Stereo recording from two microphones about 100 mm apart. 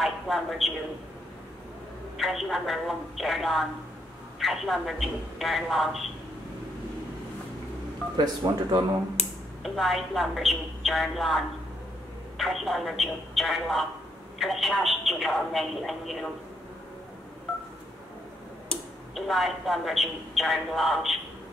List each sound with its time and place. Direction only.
0.0 s speech: centre (ahead or behind)
2.1 s speech: centre (ahead or behind)
8.2 s speech: 45° right (ahead or behind)
9.6 s speech: centre (ahead or behind)
19.1 s speech: centre (ahead or behind)